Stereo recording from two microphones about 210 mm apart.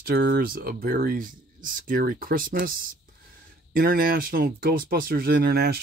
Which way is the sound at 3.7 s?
45° right (ahead or behind).